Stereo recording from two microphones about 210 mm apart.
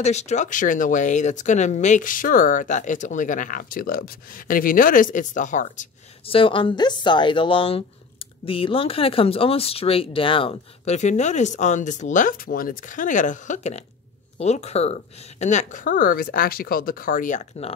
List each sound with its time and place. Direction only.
0.0 s speech: 30° left (ahead or behind)